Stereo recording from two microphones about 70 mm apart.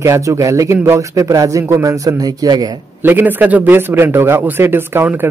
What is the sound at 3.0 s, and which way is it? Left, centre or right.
Speech, right.